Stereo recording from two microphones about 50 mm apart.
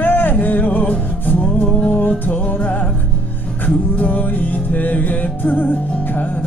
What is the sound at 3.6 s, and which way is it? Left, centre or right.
Music, left.